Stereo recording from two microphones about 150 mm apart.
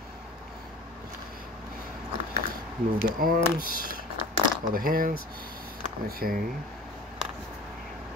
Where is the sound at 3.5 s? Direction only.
75° right (ahead or behind).